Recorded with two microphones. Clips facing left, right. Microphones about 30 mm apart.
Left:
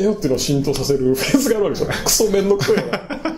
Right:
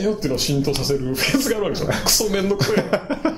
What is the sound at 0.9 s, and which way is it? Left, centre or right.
Speech, centre.